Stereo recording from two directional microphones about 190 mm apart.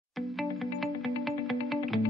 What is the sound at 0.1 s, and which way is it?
Music, centre (ahead or behind).